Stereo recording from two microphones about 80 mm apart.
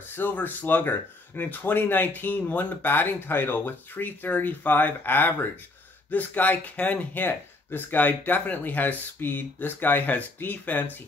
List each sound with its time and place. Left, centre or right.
0.1 s speech: left